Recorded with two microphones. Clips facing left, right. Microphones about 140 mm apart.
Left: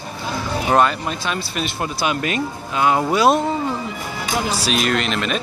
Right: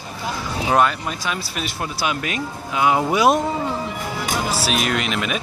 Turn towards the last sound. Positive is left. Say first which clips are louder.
# left 2 dB
turn(degrees=-10)  # may be behind; listen again after turning